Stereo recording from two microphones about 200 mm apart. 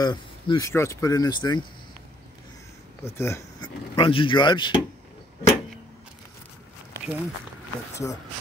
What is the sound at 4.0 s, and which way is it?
Speech, 25° left (ahead or behind).